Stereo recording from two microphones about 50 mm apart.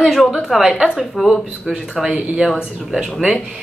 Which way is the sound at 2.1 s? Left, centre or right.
Right.